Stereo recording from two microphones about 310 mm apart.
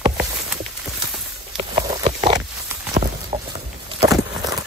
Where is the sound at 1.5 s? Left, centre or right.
Centre.